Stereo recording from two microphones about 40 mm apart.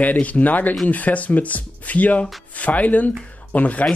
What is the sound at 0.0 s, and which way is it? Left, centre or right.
Speech, left.